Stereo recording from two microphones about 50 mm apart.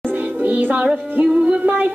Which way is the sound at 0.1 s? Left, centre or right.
Right.